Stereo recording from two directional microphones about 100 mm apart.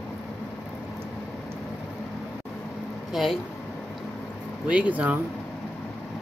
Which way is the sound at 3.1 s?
Centre (ahead or behind).